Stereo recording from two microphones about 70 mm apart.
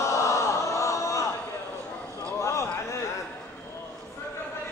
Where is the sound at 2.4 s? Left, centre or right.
Left.